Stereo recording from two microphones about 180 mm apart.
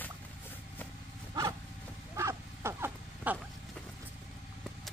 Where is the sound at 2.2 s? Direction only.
15° right (ahead or behind).